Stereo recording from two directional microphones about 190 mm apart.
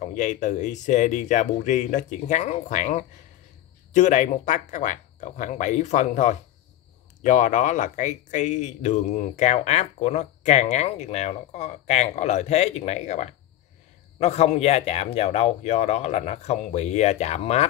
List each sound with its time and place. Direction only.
0.0 s speech: 40° left (ahead or behind)